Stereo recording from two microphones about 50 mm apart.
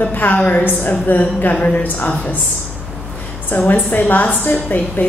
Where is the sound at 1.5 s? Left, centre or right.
Left.